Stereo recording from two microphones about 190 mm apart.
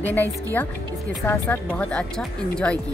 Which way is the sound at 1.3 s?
10° left (ahead or behind).